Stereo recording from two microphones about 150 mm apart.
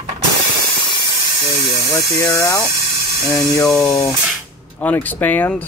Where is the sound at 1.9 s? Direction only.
20° left (ahead or behind).